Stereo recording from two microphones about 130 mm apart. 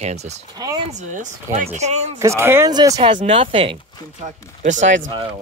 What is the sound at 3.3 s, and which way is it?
Speech, 45° right (ahead or behind).